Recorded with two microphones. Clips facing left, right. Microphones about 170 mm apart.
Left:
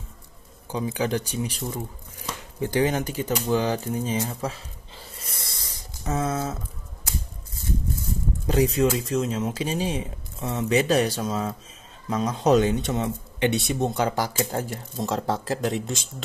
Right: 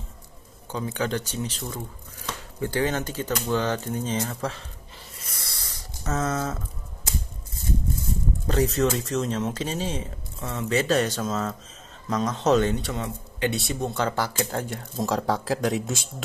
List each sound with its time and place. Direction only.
0.7 s speech: 15° left (ahead or behind)
4.9 s a sound: 30° left (ahead or behind); by 6.6 s 10° left (ahead or behind)
8.7 s speech: 10° left (ahead or behind)